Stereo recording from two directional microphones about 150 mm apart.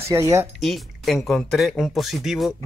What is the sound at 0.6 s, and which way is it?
Speech, centre (ahead or behind).